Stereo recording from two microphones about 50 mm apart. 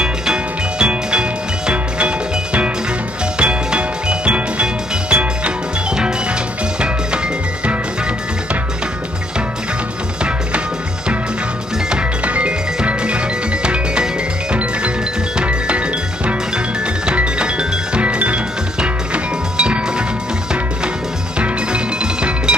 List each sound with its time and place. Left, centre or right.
0.0 s music: centre
12.3 s music: right
15.3 s music: right
17.0 s music: right
21.4 s music: right